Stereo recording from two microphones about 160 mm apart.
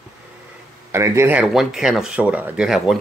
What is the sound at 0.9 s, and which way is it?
Speech, 15° right (ahead or behind).